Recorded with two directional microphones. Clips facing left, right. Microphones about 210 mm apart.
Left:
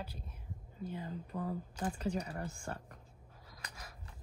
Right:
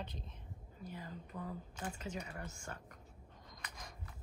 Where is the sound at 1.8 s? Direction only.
35° left (ahead or behind).